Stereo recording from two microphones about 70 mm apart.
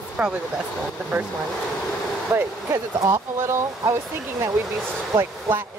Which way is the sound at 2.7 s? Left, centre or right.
Right.